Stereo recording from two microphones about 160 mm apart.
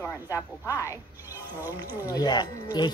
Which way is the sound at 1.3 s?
15° right (ahead or behind).